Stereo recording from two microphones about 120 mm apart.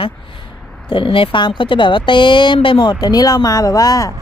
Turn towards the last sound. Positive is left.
turn(degrees=30)  # may be behind; listen again after turning